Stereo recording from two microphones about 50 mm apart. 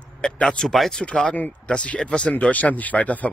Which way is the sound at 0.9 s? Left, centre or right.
Centre.